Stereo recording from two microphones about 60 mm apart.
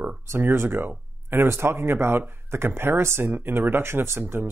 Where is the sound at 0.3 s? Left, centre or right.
Right.